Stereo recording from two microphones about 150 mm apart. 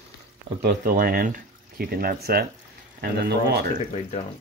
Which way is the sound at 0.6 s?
70° right (ahead or behind).